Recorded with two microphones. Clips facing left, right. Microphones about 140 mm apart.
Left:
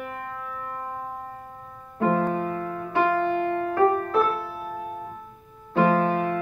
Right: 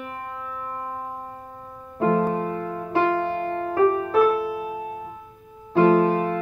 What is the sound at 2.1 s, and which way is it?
Music, 30° right (ahead or behind).